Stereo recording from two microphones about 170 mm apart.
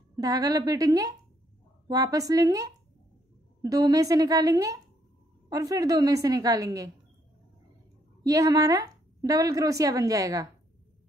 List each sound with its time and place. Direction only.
0.2 s a woman's voice: 20° right (ahead or behind)
8.2 s a woman's voice: 20° right (ahead or behind)